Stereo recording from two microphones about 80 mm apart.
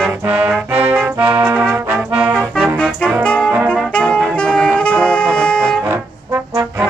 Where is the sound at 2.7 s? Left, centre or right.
Centre.